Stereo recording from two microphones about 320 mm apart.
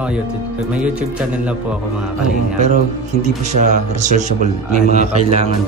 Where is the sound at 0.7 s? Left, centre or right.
Centre.